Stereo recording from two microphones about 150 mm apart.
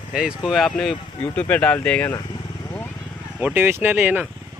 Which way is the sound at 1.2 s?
10° left (ahead or behind).